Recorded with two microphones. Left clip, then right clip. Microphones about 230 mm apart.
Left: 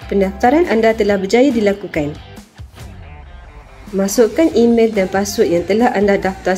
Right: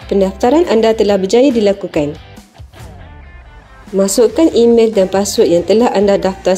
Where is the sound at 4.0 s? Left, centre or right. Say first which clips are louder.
Right 3 dB; right.